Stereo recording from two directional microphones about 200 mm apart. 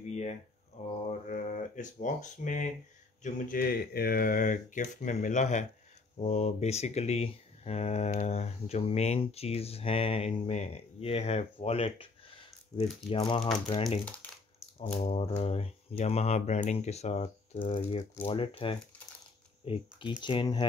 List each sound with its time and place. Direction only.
0.0 s a sound: 35° left (ahead or behind)
1.3 s speech: 40° left (ahead or behind)
13.8 s speech: 5° left (ahead or behind)
15.0 s speech: 30° left (ahead or behind)